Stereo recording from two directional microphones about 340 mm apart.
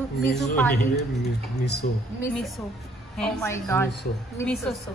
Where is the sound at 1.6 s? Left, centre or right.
Left.